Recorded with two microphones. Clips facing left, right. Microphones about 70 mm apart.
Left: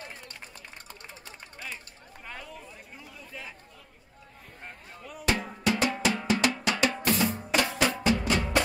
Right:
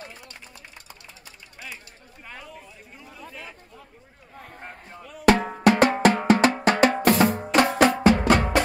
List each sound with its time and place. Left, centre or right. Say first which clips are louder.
2.2 s a sound: right 1 dB; centre
5.2 s drum: right 10 dB; right
7.0 s music: right 8 dB; right